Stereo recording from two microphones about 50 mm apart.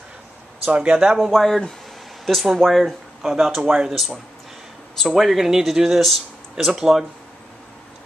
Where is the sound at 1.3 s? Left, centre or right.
Centre.